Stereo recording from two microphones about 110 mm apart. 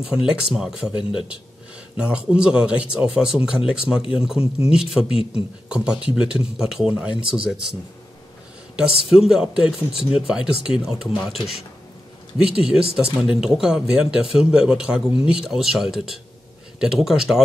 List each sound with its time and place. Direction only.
0.0 s speech: 5° right (ahead or behind)
5.0 s a man's voice: 60° left (ahead or behind)
5.7 s speech: 10° right (ahead or behind)
8.7 s speech: 5° right (ahead or behind)
12.4 s speech: 5° right (ahead or behind)